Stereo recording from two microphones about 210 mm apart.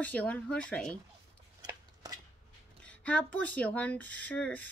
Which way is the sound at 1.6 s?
15° right (ahead or behind).